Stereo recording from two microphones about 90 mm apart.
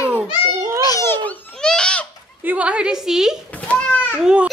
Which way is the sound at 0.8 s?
45° left (ahead or behind).